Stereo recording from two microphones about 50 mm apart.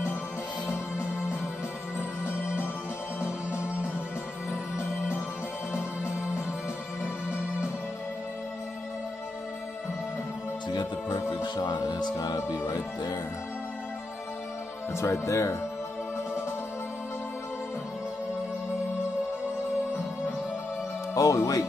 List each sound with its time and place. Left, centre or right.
2.0 s music: right
7.0 s music: right
11.1 s speech: left
12.4 s music: left
14.9 s speech: left
21.1 s speech: left